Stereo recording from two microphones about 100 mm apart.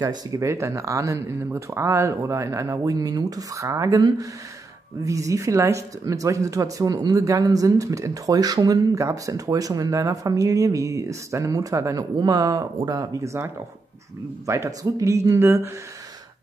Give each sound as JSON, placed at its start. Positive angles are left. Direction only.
{"t": 0.0, "sound": "speech", "side_deg": -35}